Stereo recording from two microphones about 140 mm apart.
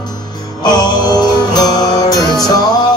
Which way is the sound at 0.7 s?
30° left (ahead or behind).